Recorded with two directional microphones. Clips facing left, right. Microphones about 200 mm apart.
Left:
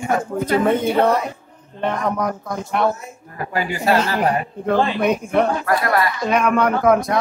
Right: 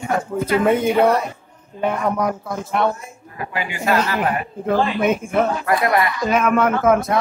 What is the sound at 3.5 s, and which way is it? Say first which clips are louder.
Speech: left 3 dB; 40° left (ahead or behind).